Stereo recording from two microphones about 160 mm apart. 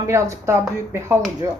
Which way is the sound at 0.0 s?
20° right (ahead or behind).